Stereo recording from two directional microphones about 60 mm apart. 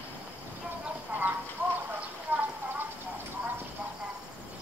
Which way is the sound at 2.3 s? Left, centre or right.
Right.